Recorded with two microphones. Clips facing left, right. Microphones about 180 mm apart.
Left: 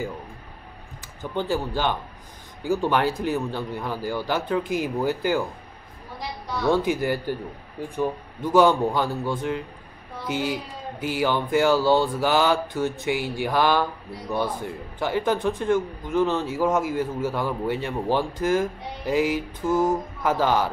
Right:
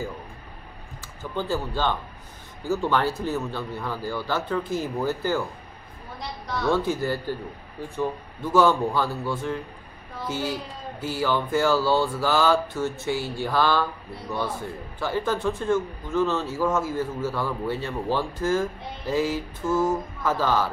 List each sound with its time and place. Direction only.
1.2 s speech: 15° left (ahead or behind)
6.7 s speech: 15° left (ahead or behind)
15.0 s speech: 15° left (ahead or behind)